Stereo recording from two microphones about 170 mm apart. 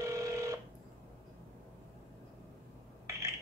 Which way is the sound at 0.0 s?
15° right (ahead or behind).